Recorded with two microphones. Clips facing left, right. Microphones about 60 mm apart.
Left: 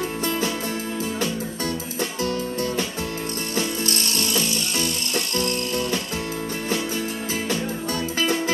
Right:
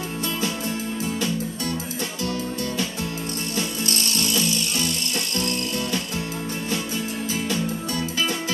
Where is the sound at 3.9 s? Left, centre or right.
Left.